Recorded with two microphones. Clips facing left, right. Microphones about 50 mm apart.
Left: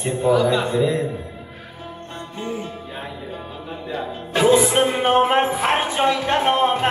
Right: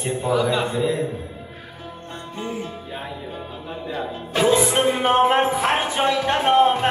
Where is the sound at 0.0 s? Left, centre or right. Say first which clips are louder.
Left 3 dB; centre.